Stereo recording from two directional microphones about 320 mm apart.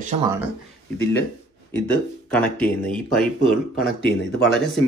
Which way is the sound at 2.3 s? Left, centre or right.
Centre.